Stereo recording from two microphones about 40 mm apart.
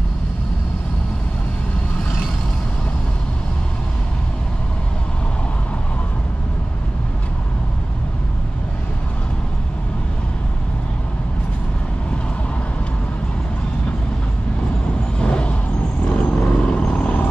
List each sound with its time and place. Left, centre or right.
15.1 s vehicle: left